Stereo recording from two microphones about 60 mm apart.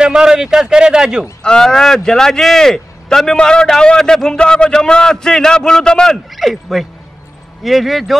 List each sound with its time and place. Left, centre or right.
0.0 s a man's voice: centre
1.4 s speech: centre
6.3 s speech: centre